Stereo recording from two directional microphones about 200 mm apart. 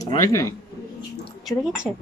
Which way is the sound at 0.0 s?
15° left (ahead or behind).